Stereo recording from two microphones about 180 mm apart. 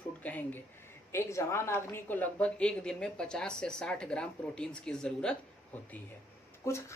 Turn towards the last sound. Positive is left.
turn(degrees=15)  # may be behind; listen again after turning